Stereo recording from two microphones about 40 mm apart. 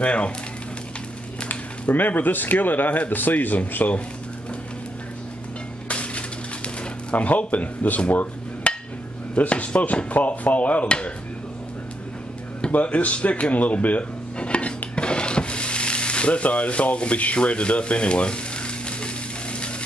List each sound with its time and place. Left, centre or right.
0.0 s speech: left
1.5 s speech: left
5.9 s a sound: left
8.1 s dishes: left
9.3 s speech: left
12.7 s speech: left
15.0 s a sound: left